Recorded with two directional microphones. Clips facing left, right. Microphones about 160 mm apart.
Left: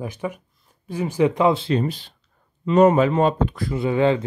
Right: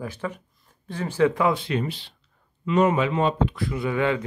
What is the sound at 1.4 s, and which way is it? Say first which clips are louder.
Speech: left 4 dB; 25° left (ahead or behind).